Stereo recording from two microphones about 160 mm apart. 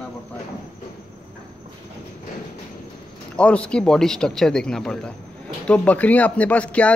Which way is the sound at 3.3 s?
10° left (ahead or behind).